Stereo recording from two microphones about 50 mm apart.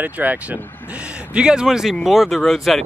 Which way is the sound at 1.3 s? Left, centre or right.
Centre.